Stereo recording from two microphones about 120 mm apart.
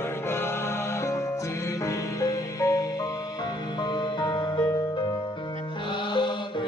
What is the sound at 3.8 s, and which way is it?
Music, 35° left (ahead or behind).